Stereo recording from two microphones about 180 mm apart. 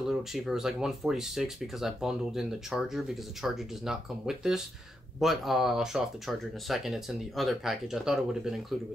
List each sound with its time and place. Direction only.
0.1 s speech: centre (ahead or behind)